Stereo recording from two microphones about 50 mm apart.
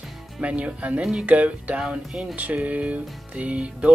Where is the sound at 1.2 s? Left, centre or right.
Right.